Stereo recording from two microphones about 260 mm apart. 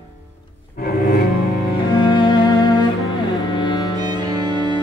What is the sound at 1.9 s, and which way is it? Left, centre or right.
Cello, centre.